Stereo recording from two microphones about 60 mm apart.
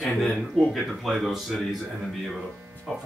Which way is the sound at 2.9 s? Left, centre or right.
Centre.